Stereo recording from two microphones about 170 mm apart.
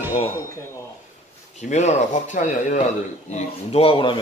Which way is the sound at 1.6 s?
45° left (ahead or behind).